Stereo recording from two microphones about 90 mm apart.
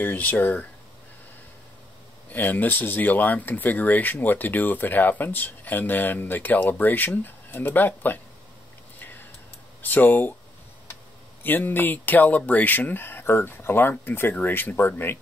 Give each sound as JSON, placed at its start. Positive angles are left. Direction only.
{"t": 0.0, "sound": "speech", "side_deg": 20}
{"t": 2.3, "sound": "speech", "side_deg": 20}
{"t": 9.8, "sound": "speech", "side_deg": 20}
{"t": 11.4, "sound": "speech", "side_deg": 20}